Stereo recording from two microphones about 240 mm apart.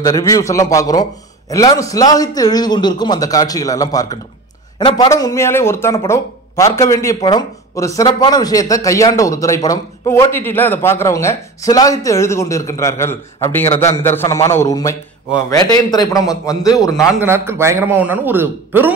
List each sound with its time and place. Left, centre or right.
0.0 s speech: centre
16.9 s a man's voice: centre
17.3 s a man's voice: centre